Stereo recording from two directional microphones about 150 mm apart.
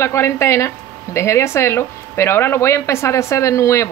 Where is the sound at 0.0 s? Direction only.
20° left (ahead or behind).